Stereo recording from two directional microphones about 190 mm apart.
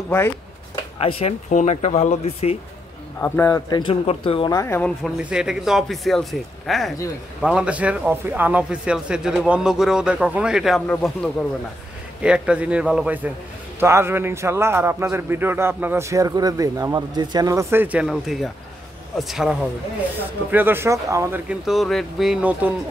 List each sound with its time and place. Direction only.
0.9 s speech: 30° left (ahead or behind)
3.2 s speech: 10° left (ahead or behind)
4.6 s speech: 10° left (ahead or behind)
5.2 s speech: 5° right (ahead or behind)